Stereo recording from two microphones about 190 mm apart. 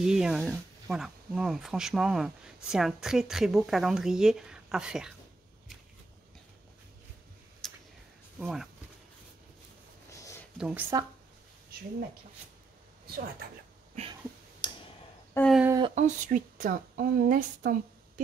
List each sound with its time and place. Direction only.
0.0 s speech: 5° right (ahead or behind)
7.6 s a sound: centre (ahead or behind)
8.4 s speech: centre (ahead or behind)
10.6 s speech: 10° right (ahead or behind)
13.0 s speech: 55° right (ahead or behind)
14.6 s clicking: 25° left (ahead or behind)
15.3 s a sound: 5° left (ahead or behind)
15.9 s a woman's voice: 40° right (ahead or behind)